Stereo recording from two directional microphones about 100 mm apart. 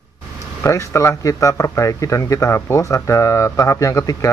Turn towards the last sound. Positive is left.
turn(degrees=30)  # may be behind; listen again after turning